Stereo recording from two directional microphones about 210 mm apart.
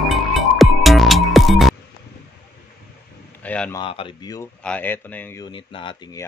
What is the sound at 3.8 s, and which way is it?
Speech, 25° left (ahead or behind).